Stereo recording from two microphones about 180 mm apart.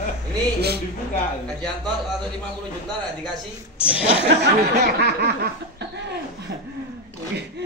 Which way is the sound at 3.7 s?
30° left (ahead or behind).